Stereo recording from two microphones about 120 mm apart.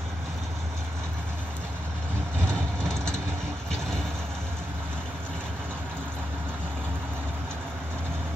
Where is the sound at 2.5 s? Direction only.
5° left (ahead or behind).